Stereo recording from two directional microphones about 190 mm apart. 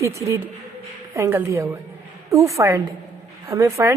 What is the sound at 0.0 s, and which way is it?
A woman's voice, 15° right (ahead or behind).